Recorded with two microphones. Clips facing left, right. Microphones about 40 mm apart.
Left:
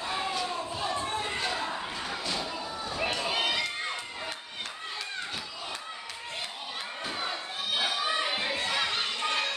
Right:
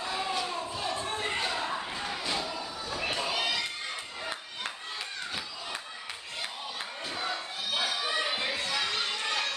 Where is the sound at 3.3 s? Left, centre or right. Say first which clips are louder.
Left 2 dB; left.